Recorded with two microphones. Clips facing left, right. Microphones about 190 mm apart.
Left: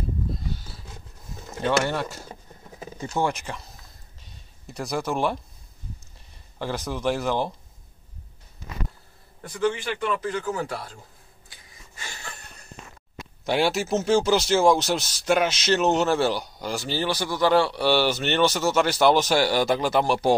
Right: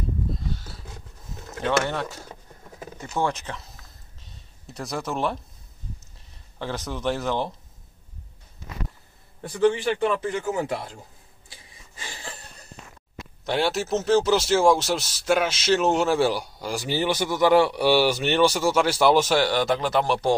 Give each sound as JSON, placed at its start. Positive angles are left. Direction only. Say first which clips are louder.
{"t": 1.5, "sound": "speech", "louder": "left 1 dB", "side_deg": 5}
{"t": 3.0, "sound": "speech", "louder": "left 1 dB", "side_deg": 15}
{"t": 4.7, "sound": "speech", "louder": "left 2 dB", "side_deg": 0}
{"t": 6.6, "sound": "speech", "louder": "left 1 dB", "side_deg": 5}
{"t": 9.4, "sound": "a man's voice", "louder": "right 4 dB", "side_deg": -30}
{"t": 11.4, "sound": "a sound", "louder": "right 2 dB", "side_deg": -30}
{"t": 13.5, "sound": "speech", "louder": "left 1 dB", "side_deg": 5}
{"t": 16.7, "sound": "a man's voice", "louder": "right 2 dB", "side_deg": -15}